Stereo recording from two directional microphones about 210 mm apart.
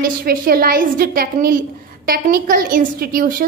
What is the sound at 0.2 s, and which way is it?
A woman's voice, 45° right (ahead or behind).